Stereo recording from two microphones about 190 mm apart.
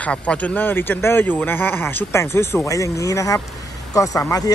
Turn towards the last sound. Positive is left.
turn(degrees=20)  # may be behind; listen again after turning